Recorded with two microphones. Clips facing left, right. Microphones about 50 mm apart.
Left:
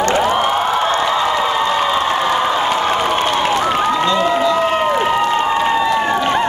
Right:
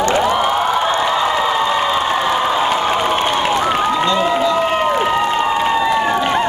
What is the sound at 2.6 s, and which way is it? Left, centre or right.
Crowd, centre.